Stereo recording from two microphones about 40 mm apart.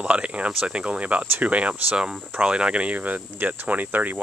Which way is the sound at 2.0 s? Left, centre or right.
Right.